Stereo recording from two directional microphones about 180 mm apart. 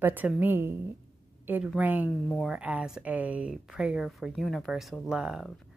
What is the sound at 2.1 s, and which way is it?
Speech, 5° left (ahead or behind).